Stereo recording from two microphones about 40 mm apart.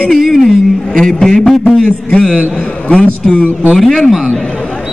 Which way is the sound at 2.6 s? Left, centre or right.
Left.